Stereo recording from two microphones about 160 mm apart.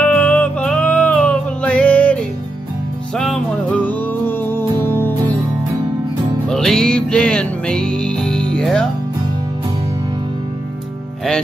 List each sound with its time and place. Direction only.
0.0 s music: 10° left (ahead or behind)
3.2 s music: 5° left (ahead or behind)
6.5 s music: 5° left (ahead or behind)